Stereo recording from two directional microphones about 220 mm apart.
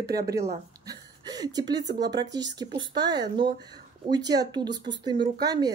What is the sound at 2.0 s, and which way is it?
Speech, 15° right (ahead or behind).